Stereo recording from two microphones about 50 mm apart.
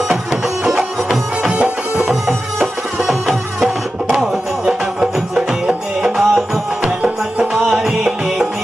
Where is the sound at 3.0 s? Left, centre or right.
Centre.